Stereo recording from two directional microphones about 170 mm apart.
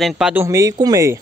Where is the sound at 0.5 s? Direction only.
20° right (ahead or behind).